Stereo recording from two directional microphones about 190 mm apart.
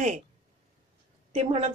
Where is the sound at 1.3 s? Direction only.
35° right (ahead or behind).